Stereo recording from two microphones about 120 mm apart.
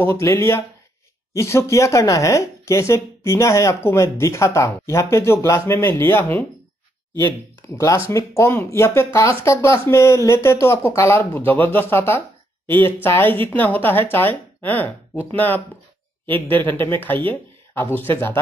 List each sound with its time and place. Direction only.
0.0 s speech: 20° left (ahead or behind)
7.7 s speech: 25° left (ahead or behind)